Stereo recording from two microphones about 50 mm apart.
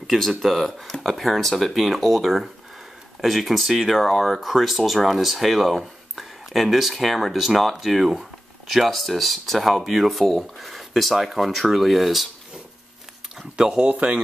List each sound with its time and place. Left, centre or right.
0.0 s speech: centre
13.6 s speech: right